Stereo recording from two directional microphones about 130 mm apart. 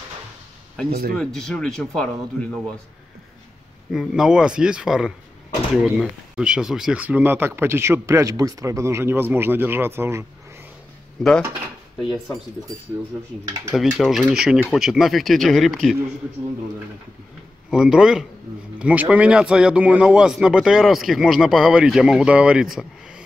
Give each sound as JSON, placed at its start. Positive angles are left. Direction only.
{"t": 0.7, "sound": "speech", "side_deg": 5}
{"t": 3.9, "sound": "speech", "side_deg": -5}
{"t": 11.2, "sound": "speech", "side_deg": 5}
{"t": 13.9, "sound": "speech", "side_deg": -5}
{"t": 17.6, "sound": "speech", "side_deg": -5}